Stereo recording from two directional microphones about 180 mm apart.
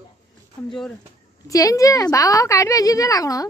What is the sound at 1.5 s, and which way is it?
A woman's voice, 20° left (ahead or behind).